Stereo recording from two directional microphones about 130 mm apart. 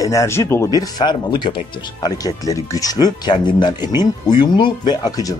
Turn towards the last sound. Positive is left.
turn(degrees=30)  # may be behind; listen again after turning